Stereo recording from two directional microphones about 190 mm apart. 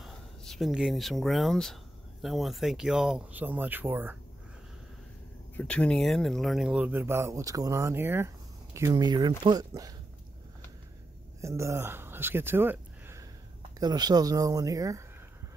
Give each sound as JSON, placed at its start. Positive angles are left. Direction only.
{"t": 0.0, "sound": "speech", "side_deg": 0}
{"t": 5.6, "sound": "speech", "side_deg": 5}
{"t": 11.4, "sound": "speech", "side_deg": -15}